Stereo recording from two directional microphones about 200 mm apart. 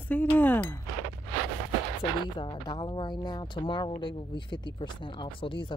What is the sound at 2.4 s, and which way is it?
Speech, 25° left (ahead or behind).